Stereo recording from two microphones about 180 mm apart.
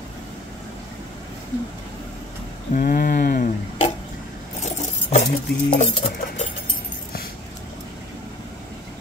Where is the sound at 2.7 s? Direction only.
50° left (ahead or behind).